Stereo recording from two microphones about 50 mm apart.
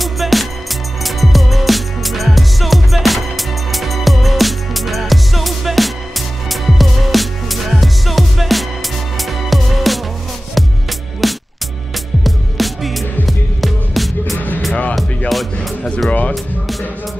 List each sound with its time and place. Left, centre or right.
0.0 s music: centre
11.2 s music: centre
16.1 s music: left